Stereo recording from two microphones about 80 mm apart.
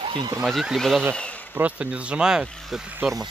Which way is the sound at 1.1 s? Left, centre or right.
Centre.